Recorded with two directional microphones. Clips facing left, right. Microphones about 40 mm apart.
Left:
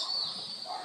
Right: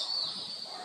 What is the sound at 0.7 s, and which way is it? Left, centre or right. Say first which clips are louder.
Bow-wow: left 9 dB; centre.